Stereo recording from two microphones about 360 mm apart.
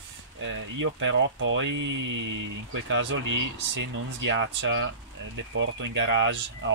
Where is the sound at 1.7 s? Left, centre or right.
Right.